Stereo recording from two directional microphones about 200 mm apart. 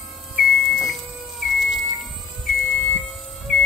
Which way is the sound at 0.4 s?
Centre (ahead or behind).